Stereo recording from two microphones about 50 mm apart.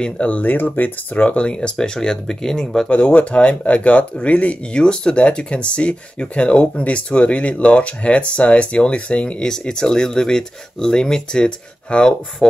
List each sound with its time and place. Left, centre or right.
0.0 s speech: left
1.5 s speech: centre
2.9 s speech: left